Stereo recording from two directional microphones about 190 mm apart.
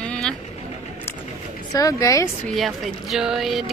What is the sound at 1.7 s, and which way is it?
Speech, 20° left (ahead or behind).